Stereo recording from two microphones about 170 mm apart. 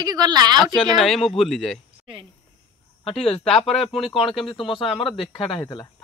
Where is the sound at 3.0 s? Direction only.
35° left (ahead or behind).